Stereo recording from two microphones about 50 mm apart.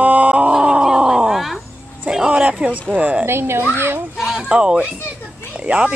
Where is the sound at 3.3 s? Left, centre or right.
Right.